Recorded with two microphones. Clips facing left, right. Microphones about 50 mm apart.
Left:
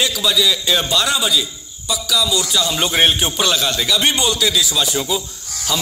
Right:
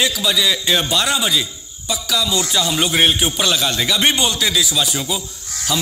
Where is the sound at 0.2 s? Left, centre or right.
Centre.